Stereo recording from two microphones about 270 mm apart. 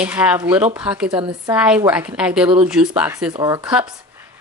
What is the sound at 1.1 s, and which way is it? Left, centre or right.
Speech, centre.